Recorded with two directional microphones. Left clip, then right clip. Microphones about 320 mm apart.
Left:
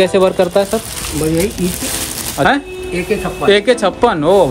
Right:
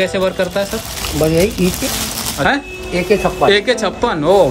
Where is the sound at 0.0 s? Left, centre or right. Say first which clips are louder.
Left 4 dB; centre.